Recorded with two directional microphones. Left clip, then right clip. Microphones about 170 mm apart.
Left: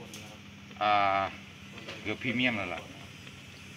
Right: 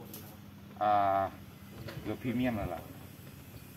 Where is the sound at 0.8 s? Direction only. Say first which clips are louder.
Left 2 dB; centre (ahead or behind).